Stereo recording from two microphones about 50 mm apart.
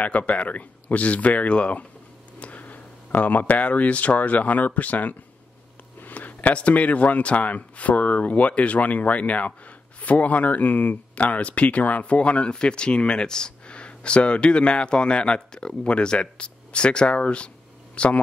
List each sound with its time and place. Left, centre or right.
0.0 s speech: left